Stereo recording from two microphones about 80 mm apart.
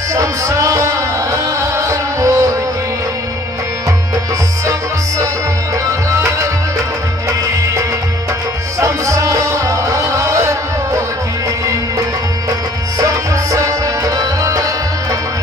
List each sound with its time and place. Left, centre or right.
0.1 s music: right
5.9 s music: right
8.7 s music: right
13.0 s music: right